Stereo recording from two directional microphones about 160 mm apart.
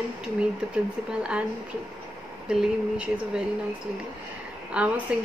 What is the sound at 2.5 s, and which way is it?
Speech, 5° right (ahead or behind).